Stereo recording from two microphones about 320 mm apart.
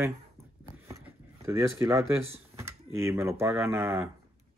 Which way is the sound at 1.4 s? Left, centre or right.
Centre.